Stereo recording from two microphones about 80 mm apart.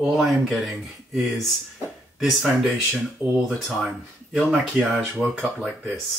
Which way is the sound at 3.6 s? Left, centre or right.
Centre.